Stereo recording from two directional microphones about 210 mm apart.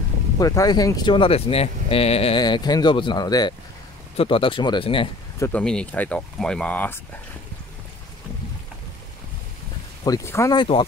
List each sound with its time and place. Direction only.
0.4 s speech: 15° left (ahead or behind)
5.5 s speech: 5° left (ahead or behind)
10.0 s speech: 15° left (ahead or behind)